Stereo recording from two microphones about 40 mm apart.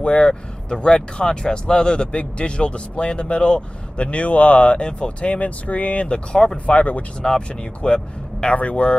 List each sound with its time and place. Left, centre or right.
0.0 s speech: left
6.6 s speech: left
7.2 s speech: left